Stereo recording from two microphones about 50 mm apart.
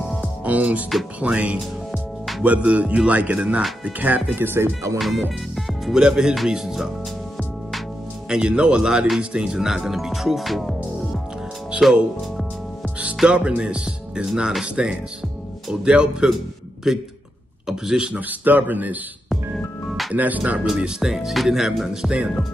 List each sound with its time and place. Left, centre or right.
0.5 s speech: right
1.9 s music: centre
2.4 s speech: right
4.4 s speech: right
4.9 s music: centre
6.0 s speech: centre
8.3 s speech: centre
13.2 s speech: centre
18.4 s speech: right
19.2 s music: centre
20.2 s speech: right
20.8 s speech: centre